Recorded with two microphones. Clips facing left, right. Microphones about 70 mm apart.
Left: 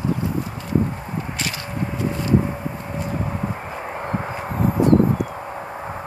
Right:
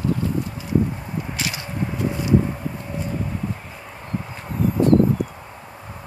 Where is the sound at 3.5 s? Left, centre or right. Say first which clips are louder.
Left 6 dB; left.